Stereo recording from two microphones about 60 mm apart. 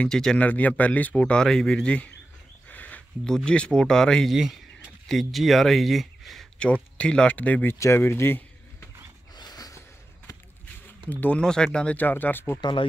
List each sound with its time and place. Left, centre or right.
0.1 s speech: centre
0.4 s speech: left
2.7 s a sound: left
3.3 s speech: centre
4.3 s speech: centre
6.6 s speech: centre
7.8 s speech: left
9.5 s a sound: left
11.1 s speech: left
11.4 s speech: centre
12.0 s speech: left